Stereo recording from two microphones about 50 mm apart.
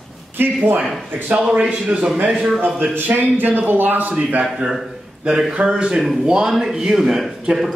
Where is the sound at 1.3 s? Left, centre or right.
Right.